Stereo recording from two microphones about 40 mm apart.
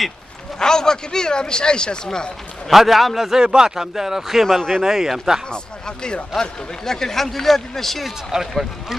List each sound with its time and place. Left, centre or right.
0.6 s speech: centre
2.7 s a man's voice: centre
3.3 s speech: centre
4.8 s speech: centre
5.5 s speech: left
8.3 s speech: centre